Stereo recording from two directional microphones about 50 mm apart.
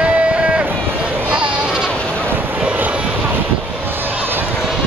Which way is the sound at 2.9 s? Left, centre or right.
Right.